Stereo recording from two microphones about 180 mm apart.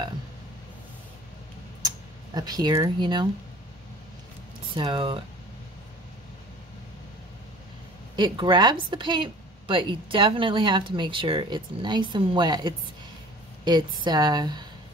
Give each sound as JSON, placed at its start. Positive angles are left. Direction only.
{"t": 2.3, "sound": "a woman's voice", "side_deg": -20}
{"t": 4.7, "sound": "a woman's voice", "side_deg": -25}
{"t": 8.2, "sound": "a woman's voice", "side_deg": -25}